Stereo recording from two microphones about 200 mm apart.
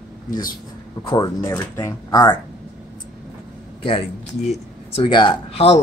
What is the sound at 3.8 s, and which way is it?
Speech, 30° left (ahead or behind).